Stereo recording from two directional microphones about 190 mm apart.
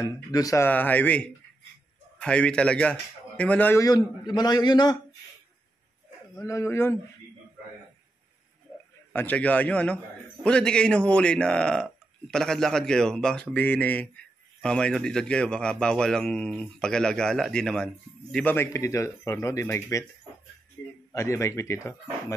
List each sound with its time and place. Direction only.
0.0 s a man's voice: 20° left (ahead or behind)
6.3 s speech: 15° left (ahead or behind)
9.1 s a man's voice: 10° left (ahead or behind)
21.1 s speech: 15° left (ahead or behind)